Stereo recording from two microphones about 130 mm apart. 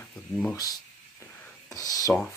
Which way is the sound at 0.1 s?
5° left (ahead or behind).